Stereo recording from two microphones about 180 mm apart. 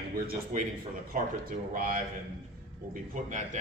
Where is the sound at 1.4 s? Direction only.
50° right (ahead or behind).